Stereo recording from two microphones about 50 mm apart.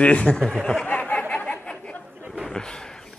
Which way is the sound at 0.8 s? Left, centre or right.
Left.